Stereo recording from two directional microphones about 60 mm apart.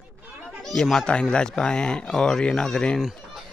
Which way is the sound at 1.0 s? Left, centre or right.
Centre.